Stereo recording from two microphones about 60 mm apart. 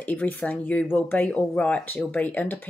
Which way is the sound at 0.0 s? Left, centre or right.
Left.